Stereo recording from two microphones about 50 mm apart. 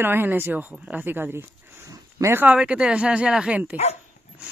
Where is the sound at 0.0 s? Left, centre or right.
Right.